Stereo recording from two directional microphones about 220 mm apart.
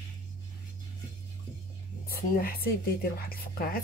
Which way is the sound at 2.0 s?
40° left (ahead or behind).